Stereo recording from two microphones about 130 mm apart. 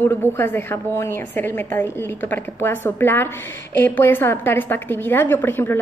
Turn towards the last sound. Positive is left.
turn(degrees=15)  # may be behind; listen again after turning